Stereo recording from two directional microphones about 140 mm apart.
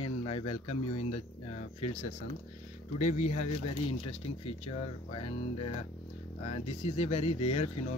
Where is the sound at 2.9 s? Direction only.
60° left (ahead or behind).